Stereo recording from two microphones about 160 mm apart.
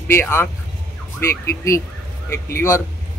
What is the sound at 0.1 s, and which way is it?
A man's voice, 15° left (ahead or behind).